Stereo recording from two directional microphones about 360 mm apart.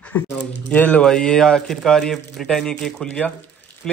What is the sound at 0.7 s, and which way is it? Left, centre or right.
Speech, centre.